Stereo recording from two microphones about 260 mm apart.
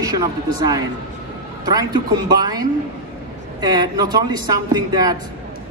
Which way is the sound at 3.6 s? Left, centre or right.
Centre.